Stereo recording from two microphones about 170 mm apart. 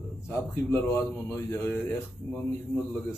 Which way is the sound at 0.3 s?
15° left (ahead or behind).